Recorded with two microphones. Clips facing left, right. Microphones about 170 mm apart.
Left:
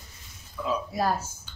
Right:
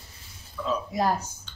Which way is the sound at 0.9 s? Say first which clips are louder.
Right 3 dB; 20° right (ahead or behind).